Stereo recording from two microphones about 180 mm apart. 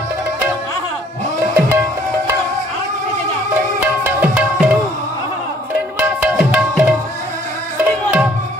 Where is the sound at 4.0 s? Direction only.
10° right (ahead or behind).